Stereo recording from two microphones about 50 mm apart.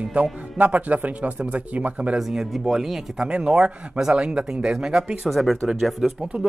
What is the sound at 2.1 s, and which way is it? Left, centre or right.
Speech, centre.